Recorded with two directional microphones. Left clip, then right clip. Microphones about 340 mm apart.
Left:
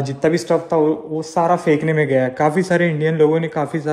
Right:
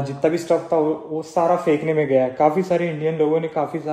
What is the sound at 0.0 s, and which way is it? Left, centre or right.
Speech, left.